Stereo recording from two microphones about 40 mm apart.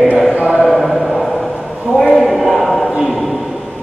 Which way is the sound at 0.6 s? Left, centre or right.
Centre.